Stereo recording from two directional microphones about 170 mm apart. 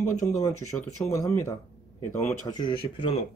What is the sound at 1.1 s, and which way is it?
Speech, 15° left (ahead or behind).